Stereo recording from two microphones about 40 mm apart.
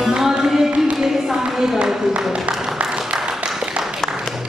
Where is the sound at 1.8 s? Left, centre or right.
Centre.